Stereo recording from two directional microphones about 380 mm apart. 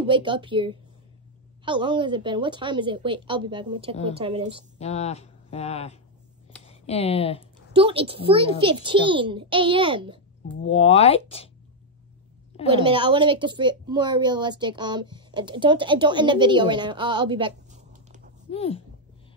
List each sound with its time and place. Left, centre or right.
0.0 s a woman's voice: centre
4.7 s speech: centre
7.7 s a woman's voice: centre
10.7 s speech: centre
12.6 s a woman's voice: centre
18.5 s speech: centre